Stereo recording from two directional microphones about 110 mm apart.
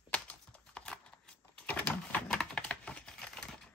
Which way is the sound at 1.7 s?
15° left (ahead or behind).